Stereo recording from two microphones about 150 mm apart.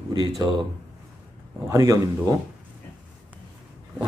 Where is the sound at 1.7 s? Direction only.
20° right (ahead or behind).